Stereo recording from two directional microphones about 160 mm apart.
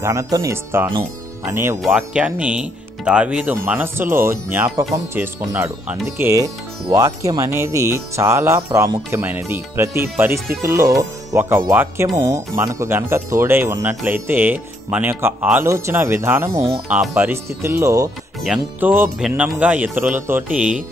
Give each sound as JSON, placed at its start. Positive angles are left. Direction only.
{"t": 0.0, "sound": "speech", "side_deg": -20}
{"t": 1.8, "sound": "speech", "side_deg": -5}